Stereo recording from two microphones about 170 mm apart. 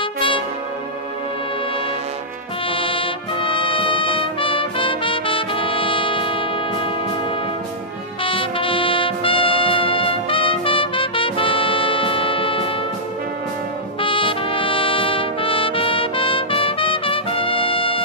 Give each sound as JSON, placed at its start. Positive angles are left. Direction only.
{"t": 0.0, "sound": "brass instrument", "side_deg": 30}
{"t": 2.7, "sound": "music", "side_deg": 30}
{"t": 8.2, "sound": "music", "side_deg": 30}
{"t": 14.0, "sound": "trumpet", "side_deg": 30}